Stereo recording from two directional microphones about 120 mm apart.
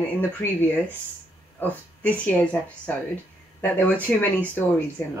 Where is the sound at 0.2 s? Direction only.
15° left (ahead or behind).